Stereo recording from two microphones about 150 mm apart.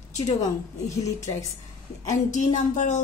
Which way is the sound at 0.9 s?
20° left (ahead or behind).